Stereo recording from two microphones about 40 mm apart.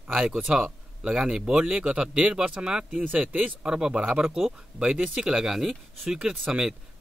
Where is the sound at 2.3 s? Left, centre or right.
Right.